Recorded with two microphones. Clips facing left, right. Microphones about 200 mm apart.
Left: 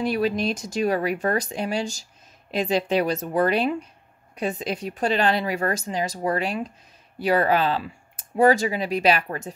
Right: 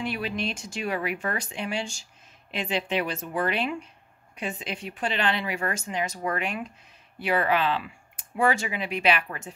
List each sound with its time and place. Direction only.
0.0 s speech: 40° left (ahead or behind)